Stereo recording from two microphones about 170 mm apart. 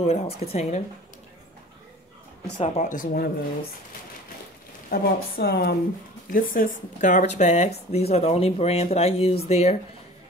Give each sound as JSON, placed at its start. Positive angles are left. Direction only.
{"t": 0.0, "sound": "speech", "side_deg": 35}
{"t": 2.6, "sound": "speech", "side_deg": 45}
{"t": 4.8, "sound": "a woman's voice", "side_deg": 65}
{"t": 6.3, "sound": "speech", "side_deg": 50}